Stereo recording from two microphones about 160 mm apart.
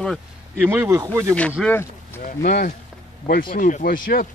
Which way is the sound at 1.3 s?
10° left (ahead or behind).